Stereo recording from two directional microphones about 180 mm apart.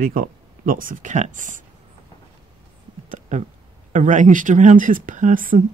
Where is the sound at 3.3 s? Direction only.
45° right (ahead or behind).